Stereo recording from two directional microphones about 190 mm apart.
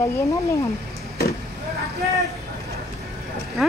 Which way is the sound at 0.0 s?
15° left (ahead or behind).